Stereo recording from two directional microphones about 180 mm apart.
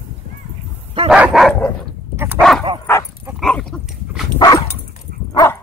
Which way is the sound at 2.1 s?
10° right (ahead or behind).